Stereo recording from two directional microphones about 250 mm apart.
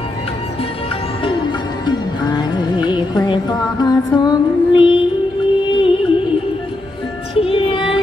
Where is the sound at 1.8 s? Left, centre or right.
Centre.